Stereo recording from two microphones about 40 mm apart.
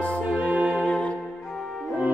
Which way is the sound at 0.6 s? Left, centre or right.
Left.